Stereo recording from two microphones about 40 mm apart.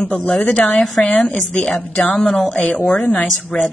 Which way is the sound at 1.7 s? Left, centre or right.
Centre.